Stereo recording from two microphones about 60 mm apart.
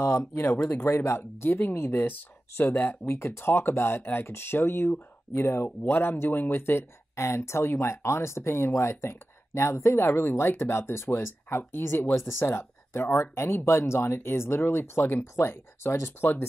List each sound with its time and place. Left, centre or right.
0.0 s speech: left
3.1 s speech: left
5.9 s speech: left